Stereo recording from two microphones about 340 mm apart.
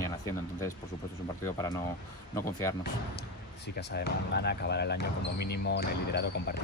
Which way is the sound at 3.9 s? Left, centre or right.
Left.